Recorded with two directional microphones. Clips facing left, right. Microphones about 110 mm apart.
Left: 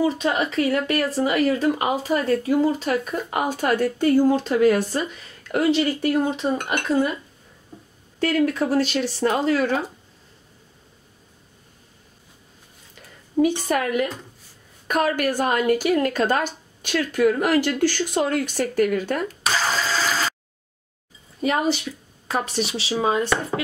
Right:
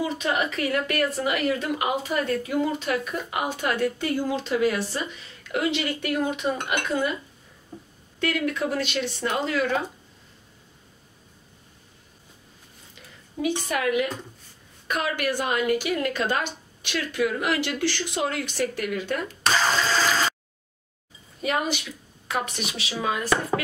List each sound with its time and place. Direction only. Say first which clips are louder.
0.0 s speech: left 4 dB; 35° left (ahead or behind)
5.5 s speech: left 6 dB; 35° left (ahead or behind)
8.2 s speech: left 5 dB; 35° left (ahead or behind)
13.4 s a woman's voice: left 6 dB; 40° left (ahead or behind)
19.4 s a sound: right 4 dB; centre (ahead or behind)
21.4 s speech: left 5 dB; 35° left (ahead or behind)